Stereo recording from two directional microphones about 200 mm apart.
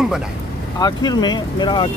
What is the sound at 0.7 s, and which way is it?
Speech, 20° left (ahead or behind).